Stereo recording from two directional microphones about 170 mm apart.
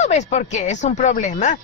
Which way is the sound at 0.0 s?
40° left (ahead or behind).